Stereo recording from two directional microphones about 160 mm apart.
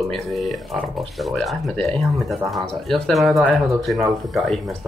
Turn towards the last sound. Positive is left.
turn(degrees=0)  # may be behind; listen again after turning